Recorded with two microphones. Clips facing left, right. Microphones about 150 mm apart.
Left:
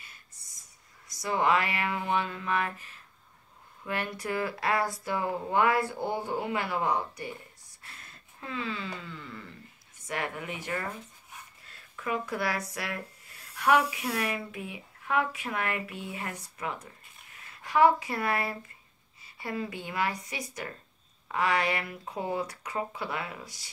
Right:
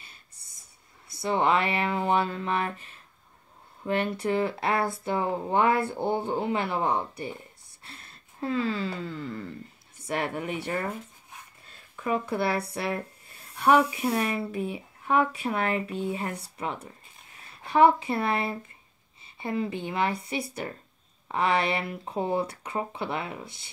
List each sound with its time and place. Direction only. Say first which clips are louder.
0.4 s a sound: right 1 dB; 30° right (ahead or behind)
1.2 s speech: right 2 dB; 25° right (ahead or behind)
12.0 s speech: right 4 dB; 30° right (ahead or behind)